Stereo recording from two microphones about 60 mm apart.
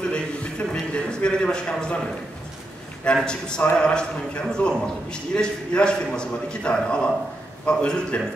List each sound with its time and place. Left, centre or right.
0.1 s a man's voice: centre
3.3 s a man's voice: centre